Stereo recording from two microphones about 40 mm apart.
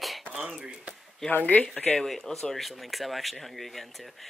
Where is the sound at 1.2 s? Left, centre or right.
Centre.